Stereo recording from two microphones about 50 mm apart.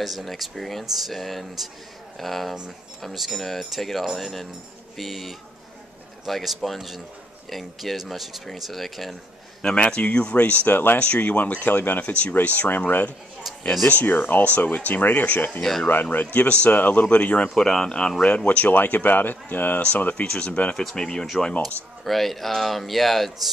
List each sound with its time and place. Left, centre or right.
0.0 s speech: centre
9.6 s speech: centre; by 11.0 s left
11.0 s speech: left
16.3 s speech: left
17.6 s speech: centre
18.2 s speech: left
20.2 s speech: left; by 23.5 s centre